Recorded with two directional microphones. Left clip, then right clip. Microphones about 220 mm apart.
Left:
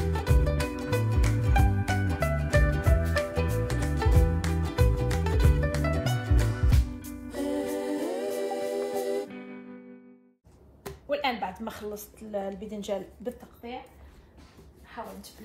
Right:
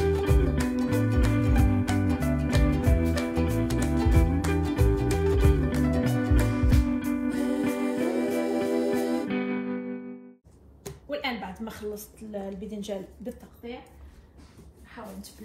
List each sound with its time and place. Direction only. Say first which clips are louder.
0.0 s music: right 5 dB; centre (ahead or behind)
10.8 s a sound: left 3 dB; 30° left (ahead or behind)
12.3 s a woman's voice: left 3 dB; 30° left (ahead or behind)